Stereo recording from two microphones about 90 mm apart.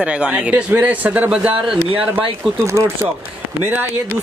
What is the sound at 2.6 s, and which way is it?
Speech, 30° right (ahead or behind).